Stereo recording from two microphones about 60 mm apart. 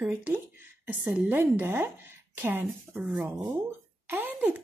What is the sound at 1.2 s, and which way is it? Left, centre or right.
A woman's voice, right.